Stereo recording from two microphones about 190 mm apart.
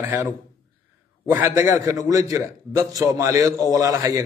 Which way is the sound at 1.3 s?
10° right (ahead or behind).